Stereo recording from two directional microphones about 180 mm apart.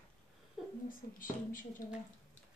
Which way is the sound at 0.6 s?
Centre (ahead or behind).